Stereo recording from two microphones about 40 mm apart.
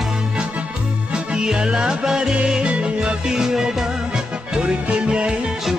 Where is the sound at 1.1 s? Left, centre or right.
Centre.